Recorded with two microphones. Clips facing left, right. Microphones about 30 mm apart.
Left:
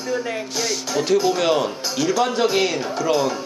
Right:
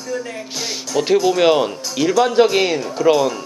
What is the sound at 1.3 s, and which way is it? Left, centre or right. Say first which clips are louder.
A man's voice: right 5 dB; centre.